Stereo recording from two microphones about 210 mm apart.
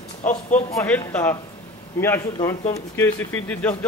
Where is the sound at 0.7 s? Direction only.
5° left (ahead or behind).